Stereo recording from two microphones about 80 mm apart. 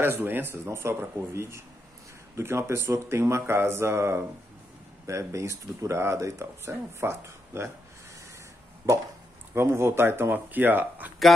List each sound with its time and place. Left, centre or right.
0.0 s speech: right
9.5 s speech: right